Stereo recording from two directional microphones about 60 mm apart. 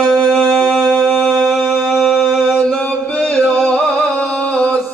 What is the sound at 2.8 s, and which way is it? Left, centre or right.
Music, centre.